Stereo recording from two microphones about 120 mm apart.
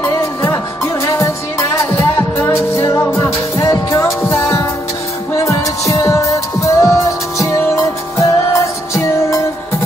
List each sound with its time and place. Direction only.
0.0 s music: 25° left (ahead or behind)